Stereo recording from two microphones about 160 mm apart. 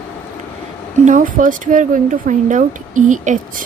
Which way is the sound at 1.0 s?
55° right (ahead or behind).